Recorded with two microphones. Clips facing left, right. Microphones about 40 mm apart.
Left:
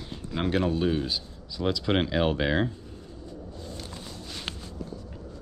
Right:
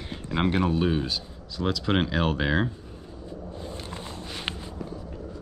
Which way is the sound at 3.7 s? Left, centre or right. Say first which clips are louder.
Right 3 dB; right.